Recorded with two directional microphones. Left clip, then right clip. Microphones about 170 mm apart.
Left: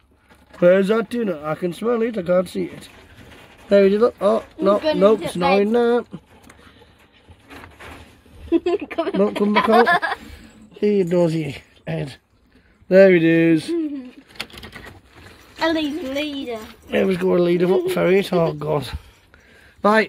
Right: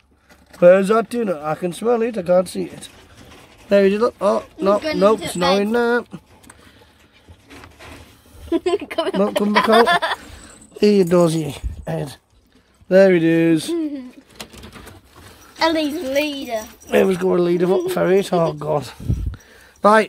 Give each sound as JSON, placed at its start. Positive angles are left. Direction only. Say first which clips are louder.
{"t": 0.6, "sound": "speech", "louder": "right 3 dB", "side_deg": 0}
{"t": 8.5, "sound": "speech", "louder": "even", "side_deg": -60}
{"t": 10.8, "sound": "speech", "louder": "right 3 dB", "side_deg": -30}
{"t": 11.8, "sound": "speech", "louder": "right 2 dB", "side_deg": -5}
{"t": 15.6, "sound": "speech", "louder": "right 3 dB", "side_deg": -70}
{"t": 17.1, "sound": "speech", "louder": "even", "side_deg": 0}
{"t": 19.8, "sound": "a man's voice", "louder": "right 3 dB", "side_deg": -10}